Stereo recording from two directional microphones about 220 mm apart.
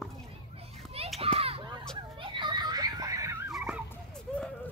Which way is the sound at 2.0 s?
20° right (ahead or behind).